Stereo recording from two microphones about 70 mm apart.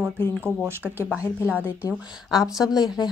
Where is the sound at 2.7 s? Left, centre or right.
Left.